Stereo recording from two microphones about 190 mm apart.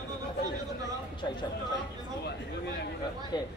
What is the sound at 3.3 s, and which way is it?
Speech, 20° left (ahead or behind).